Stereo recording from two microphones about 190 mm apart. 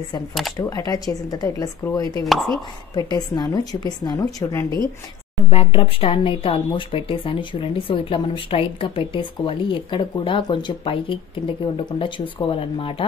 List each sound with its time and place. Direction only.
0.6 s speech: 20° left (ahead or behind)
2.2 s speech: centre (ahead or behind)
3.0 s speech: 20° left (ahead or behind)
5.5 s speech: 30° left (ahead or behind)